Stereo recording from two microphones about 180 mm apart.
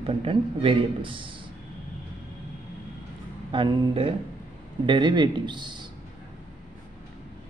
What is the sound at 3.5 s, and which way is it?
A man's voice, 25° right (ahead or behind).